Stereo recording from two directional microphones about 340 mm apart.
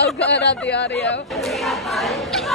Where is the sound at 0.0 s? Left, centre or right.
Left.